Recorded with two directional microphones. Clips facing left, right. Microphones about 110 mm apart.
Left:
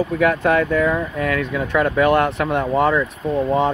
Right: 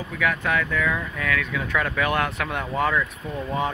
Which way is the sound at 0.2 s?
35° left (ahead or behind).